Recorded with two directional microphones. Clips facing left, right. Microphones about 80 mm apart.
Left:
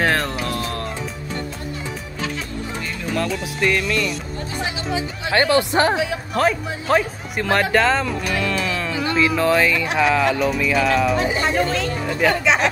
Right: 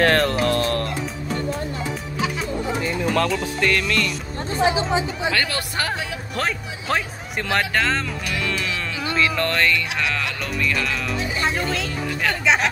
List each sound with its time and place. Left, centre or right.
0.0 s music: centre
3.1 s music: centre
4.6 s speech: right
5.3 s speech: left
5.9 s music: centre